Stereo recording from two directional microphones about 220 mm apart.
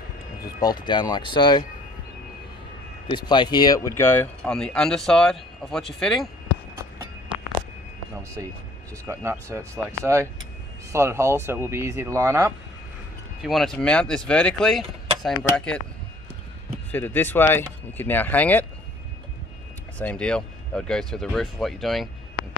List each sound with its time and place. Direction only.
0.6 s speech: 20° left (ahead or behind)
3.1 s speech: 20° left (ahead or behind); by 6.3 s centre (ahead or behind)
8.4 s speech: 15° right (ahead or behind)
13.4 s speech: centre (ahead or behind)
16.9 s speech: 10° left (ahead or behind)
20.0 s speech: 5° left (ahead or behind)